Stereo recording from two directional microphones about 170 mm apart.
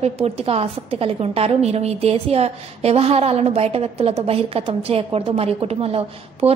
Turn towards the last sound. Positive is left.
turn(degrees=-35)  # may be behind; listen again after turning